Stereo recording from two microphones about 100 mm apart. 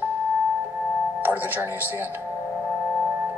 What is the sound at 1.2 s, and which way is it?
Speech, 20° right (ahead or behind).